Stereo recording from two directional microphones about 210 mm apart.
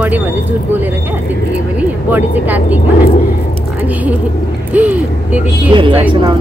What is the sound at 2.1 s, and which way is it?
Speech, 10° right (ahead or behind).